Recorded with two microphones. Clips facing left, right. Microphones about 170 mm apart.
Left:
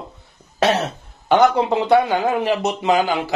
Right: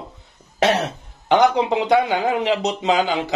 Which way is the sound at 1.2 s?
15° right (ahead or behind).